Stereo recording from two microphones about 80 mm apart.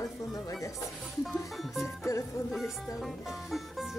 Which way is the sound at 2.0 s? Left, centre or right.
Left.